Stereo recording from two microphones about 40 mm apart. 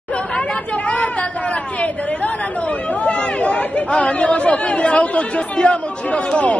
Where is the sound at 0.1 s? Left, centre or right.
Left.